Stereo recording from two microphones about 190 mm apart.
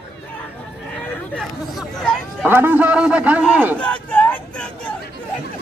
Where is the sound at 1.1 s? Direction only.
5° left (ahead or behind).